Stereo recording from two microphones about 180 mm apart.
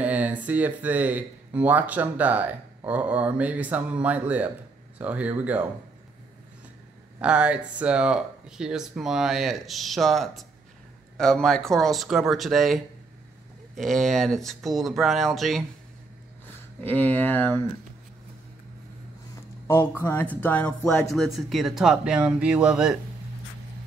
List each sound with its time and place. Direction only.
0.0 s speech: 10° right (ahead or behind)
7.2 s speech: 5° right (ahead or behind)
16.8 s speech: 10° left (ahead or behind)
20.0 s speech: 10° left (ahead or behind)
21.1 s speech: centre (ahead or behind)